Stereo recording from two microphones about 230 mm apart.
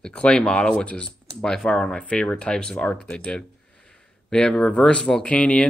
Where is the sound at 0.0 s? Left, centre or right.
Centre.